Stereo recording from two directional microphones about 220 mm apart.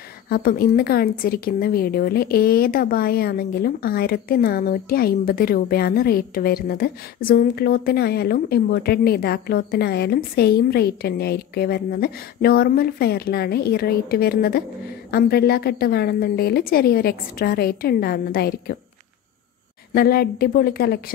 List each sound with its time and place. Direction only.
0.3 s a woman's voice: 45° left (ahead or behind)
19.9 s a woman's voice: 45° left (ahead or behind)